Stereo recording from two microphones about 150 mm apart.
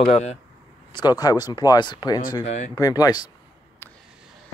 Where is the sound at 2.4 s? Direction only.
50° left (ahead or behind).